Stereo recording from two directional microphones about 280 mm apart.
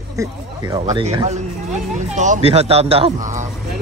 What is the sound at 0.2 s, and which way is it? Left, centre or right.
Speech, centre.